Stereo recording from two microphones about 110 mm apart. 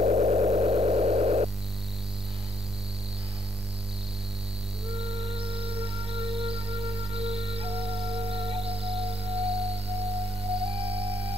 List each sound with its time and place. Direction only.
0.0 s vehicle: 90° right; by 1.5 s 70° right (ahead or behind)
4.8 s music: 60° right (ahead or behind)